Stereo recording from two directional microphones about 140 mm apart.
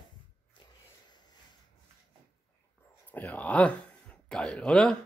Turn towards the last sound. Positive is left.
turn(degrees=5)  # may be behind; listen again after turning